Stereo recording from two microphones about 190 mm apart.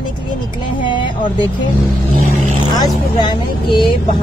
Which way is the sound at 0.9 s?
25° left (ahead or behind).